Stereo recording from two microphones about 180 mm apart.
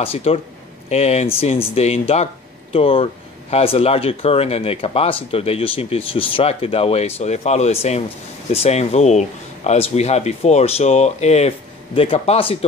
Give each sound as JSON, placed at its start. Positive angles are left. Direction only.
{"t": 0.0, "sound": "speech", "side_deg": 35}